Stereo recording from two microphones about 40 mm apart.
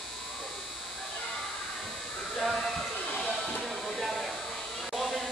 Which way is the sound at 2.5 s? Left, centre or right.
Centre.